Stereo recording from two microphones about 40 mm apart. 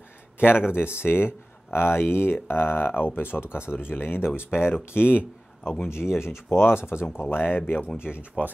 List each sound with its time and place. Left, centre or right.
0.4 s speech: left
0.9 s speech: left
5.9 s speech: left
8.0 s speech: right